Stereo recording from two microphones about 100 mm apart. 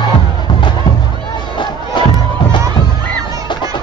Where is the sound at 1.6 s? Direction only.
50° left (ahead or behind).